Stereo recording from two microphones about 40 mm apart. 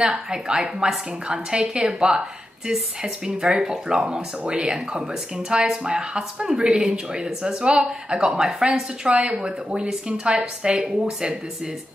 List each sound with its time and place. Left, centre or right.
0.0 s a woman's voice: centre
9.1 s a woman's voice: right